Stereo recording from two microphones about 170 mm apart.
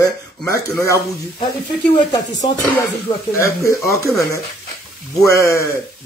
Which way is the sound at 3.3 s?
15° left (ahead or behind).